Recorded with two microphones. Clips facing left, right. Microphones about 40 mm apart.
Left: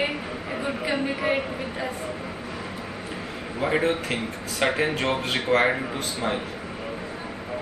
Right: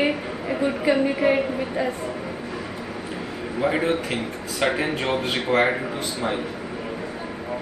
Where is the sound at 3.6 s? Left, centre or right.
Centre.